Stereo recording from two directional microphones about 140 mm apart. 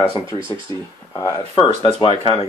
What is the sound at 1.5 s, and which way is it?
Speech, 35° left (ahead or behind).